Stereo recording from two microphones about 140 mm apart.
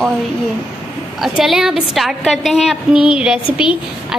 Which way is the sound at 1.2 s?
Centre (ahead or behind).